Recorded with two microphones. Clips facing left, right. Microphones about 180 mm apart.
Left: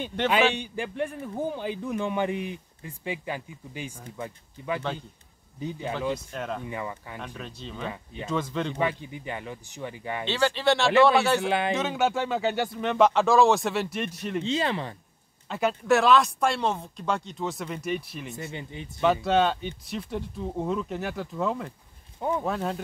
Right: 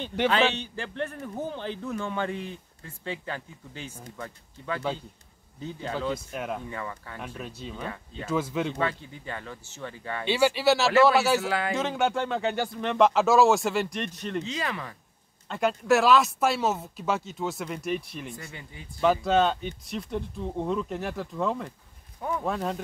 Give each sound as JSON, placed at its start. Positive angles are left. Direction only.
{"t": 0.3, "sound": "a man's voice", "side_deg": 15}
{"t": 6.1, "sound": "speech", "side_deg": -10}
{"t": 6.7, "sound": "a man's voice", "side_deg": 15}
{"t": 7.3, "sound": "speech", "side_deg": -5}
{"t": 7.9, "sound": "a man's voice", "side_deg": 15}
{"t": 8.3, "sound": "speech", "side_deg": -5}
{"t": 8.7, "sound": "a man's voice", "side_deg": 15}
{"t": 10.2, "sound": "speech", "side_deg": -10}
{"t": 11.4, "sound": "speech", "side_deg": 20}
{"t": 11.7, "sound": "speech", "side_deg": 0}
{"t": 14.4, "sound": "speech", "side_deg": 30}
{"t": 15.4, "sound": "speech", "side_deg": 0}
{"t": 18.3, "sound": "speech", "side_deg": 20}
{"t": 18.9, "sound": "speech", "side_deg": 0}